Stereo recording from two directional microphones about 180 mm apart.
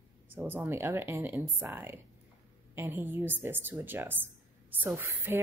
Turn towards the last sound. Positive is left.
turn(degrees=-10)  # may be behind; listen again after turning